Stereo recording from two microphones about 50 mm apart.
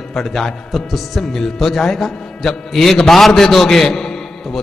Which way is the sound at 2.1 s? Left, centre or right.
Centre.